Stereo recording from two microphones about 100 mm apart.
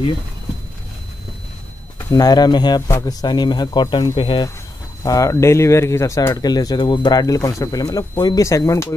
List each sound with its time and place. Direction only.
2.1 s speech: 40° left (ahead or behind)
5.0 s speech: 35° left (ahead or behind)